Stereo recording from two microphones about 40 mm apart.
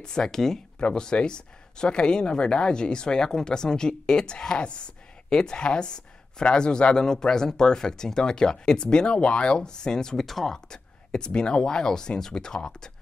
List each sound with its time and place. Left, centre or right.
0.0 s speech: centre